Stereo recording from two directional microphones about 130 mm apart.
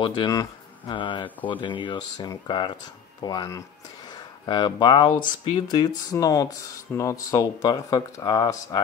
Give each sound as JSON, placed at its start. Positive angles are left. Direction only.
{"t": 0.0, "sound": "speech", "side_deg": 35}